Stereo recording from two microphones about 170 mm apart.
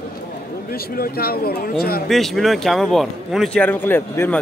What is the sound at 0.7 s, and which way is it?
A man's voice, 60° left (ahead or behind).